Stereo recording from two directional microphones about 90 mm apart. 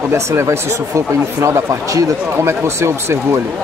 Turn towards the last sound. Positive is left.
turn(degrees=-30)  # may be behind; listen again after turning